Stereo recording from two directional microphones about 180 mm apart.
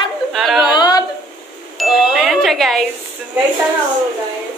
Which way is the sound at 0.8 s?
25° left (ahead or behind).